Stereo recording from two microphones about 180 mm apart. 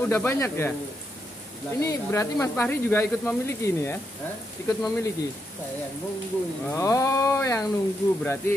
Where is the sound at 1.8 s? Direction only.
15° left (ahead or behind).